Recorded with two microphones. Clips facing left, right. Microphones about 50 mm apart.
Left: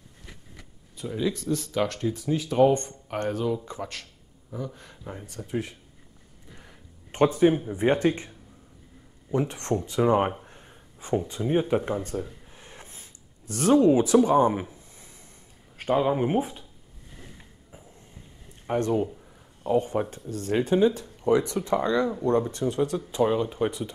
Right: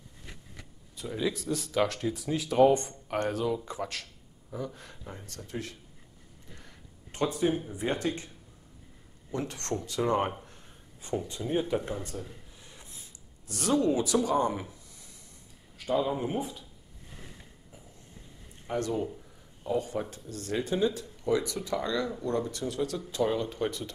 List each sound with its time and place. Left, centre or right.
0.9 s speech: centre
5.0 s speech: centre
7.1 s speech: left
9.3 s speech: centre
12.1 s a sound: left
15.8 s speech: left
18.7 s speech: left